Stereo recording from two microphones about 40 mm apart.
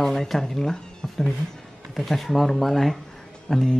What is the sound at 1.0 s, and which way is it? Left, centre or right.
Cat, centre.